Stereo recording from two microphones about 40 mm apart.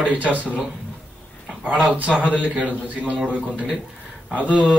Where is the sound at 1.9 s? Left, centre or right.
Right.